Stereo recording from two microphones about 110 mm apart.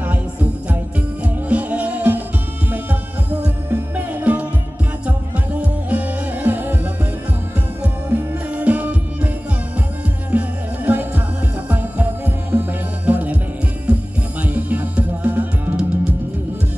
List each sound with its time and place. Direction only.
1.2 s music: 15° right (ahead or behind)
5.6 s music: 15° right (ahead or behind)
8.5 s music: 15° right (ahead or behind)
10.3 s music: 15° right (ahead or behind)
14.4 s music: 15° right (ahead or behind)